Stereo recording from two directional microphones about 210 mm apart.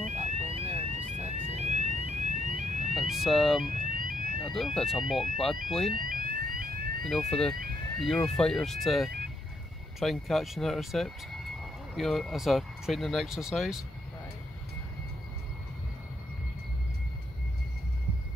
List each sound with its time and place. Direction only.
0.0 s fire alarm: 35° right (ahead or behind)
2.9 s police car: centre (ahead or behind)
3.8 s fire alarm: 40° right (ahead or behind)
4.5 s speech: centre (ahead or behind)
5.9 s fire alarm: 40° right (ahead or behind)
7.1 s speech: centre (ahead or behind)